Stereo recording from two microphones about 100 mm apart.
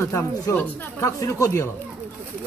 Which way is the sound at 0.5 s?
15° left (ahead or behind).